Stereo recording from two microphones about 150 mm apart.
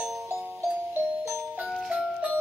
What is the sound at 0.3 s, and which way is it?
Music, 15° right (ahead or behind).